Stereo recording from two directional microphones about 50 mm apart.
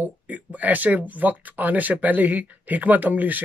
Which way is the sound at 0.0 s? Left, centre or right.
Right.